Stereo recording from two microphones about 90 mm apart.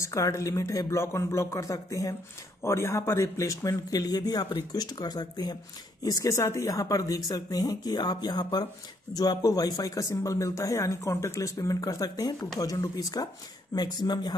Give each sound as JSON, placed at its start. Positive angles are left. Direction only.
{"t": 0.0, "sound": "speech", "side_deg": 35}
{"t": 6.0, "sound": "speech", "side_deg": 35}